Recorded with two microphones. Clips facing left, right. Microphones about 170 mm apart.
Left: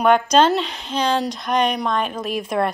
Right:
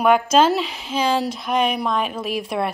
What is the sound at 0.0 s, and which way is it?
Speech, 5° right (ahead or behind).